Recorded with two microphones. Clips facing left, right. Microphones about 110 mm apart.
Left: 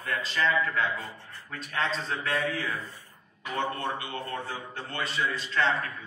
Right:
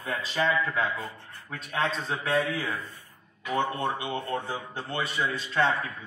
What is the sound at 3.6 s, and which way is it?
A man's voice, 20° right (ahead or behind).